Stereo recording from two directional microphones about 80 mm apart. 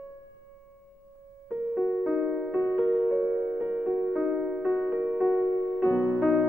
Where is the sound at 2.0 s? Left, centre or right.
Centre.